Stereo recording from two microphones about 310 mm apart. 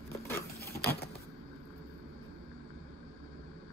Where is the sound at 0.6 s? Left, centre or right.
Left.